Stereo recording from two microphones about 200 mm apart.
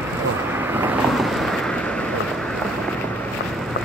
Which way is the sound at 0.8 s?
5° right (ahead or behind).